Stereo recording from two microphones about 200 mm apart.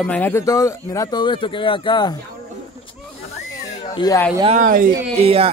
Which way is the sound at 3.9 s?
20° left (ahead or behind).